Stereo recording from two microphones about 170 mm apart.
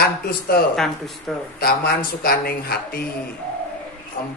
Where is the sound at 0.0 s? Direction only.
65° left (ahead or behind).